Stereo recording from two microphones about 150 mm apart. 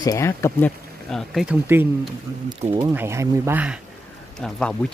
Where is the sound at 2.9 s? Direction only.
20° right (ahead or behind).